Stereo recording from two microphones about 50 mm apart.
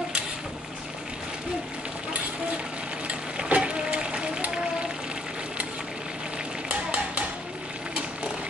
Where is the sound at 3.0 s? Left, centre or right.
Right.